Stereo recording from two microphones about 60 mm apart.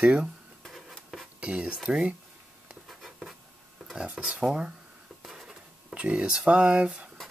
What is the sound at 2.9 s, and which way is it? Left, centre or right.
Writing, centre.